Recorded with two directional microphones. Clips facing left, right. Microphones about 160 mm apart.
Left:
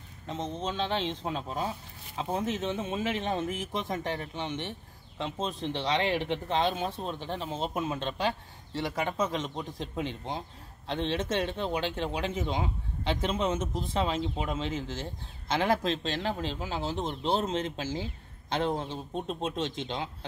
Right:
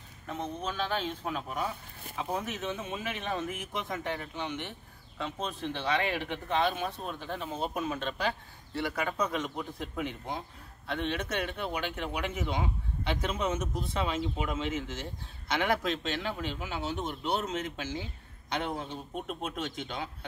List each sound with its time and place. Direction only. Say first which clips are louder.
0.3 s a man's voice: left 2 dB; 20° left (ahead or behind)